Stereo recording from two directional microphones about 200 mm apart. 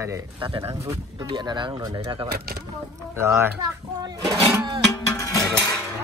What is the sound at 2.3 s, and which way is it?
Speech, 50° right (ahead or behind).